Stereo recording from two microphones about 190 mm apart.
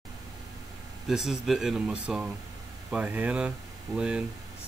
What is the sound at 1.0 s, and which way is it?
Speech, 5° right (ahead or behind).